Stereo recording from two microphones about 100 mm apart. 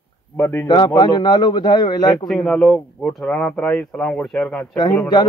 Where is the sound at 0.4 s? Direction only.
25° left (ahead or behind).